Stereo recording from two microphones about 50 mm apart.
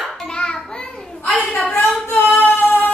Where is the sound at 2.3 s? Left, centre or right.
Left.